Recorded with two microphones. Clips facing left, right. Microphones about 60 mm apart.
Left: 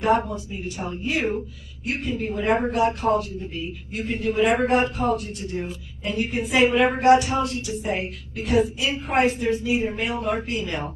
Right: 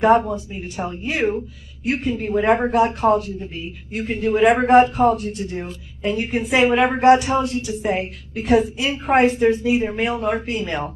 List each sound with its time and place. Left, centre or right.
0.3 s a woman's voice: right